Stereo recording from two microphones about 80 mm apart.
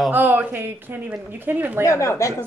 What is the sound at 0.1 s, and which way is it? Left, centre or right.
Speech, right.